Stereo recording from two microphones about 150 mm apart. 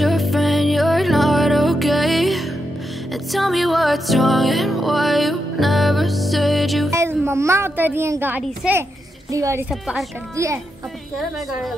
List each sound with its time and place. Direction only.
0.0 s music: centre (ahead or behind)
6.9 s music: 20° right (ahead or behind)
7.2 s a woman's voice: 20° right (ahead or behind)
9.7 s a woman's voice: 5° right (ahead or behind)
10.3 s a woman's voice: 20° right (ahead or behind)
11.1 s a woman's voice: centre (ahead or behind)